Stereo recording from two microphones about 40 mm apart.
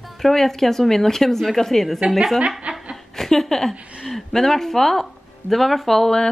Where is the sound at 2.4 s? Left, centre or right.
Right.